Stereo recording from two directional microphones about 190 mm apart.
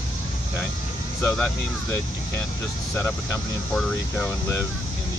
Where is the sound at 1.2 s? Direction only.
5° left (ahead or behind).